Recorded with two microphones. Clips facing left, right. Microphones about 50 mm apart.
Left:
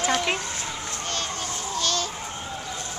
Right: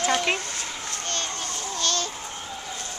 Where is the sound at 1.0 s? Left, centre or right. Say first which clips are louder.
Left 1 dB; centre.